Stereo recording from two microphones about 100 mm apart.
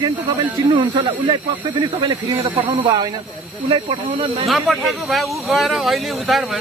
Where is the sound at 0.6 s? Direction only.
50° right (ahead or behind).